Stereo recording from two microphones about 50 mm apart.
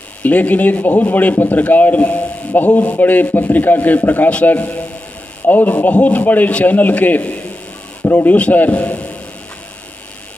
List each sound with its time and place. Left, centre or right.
0.2 s a man's voice: left
5.8 s a man's voice: left